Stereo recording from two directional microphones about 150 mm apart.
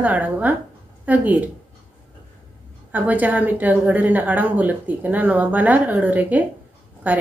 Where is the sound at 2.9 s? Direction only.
10° right (ahead or behind).